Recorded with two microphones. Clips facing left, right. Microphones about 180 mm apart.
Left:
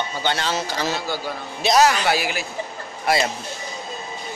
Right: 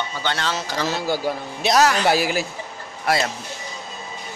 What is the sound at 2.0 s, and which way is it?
Speech, 40° right (ahead or behind).